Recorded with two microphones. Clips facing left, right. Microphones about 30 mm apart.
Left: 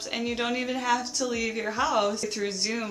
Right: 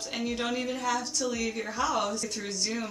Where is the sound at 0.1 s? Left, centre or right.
Left.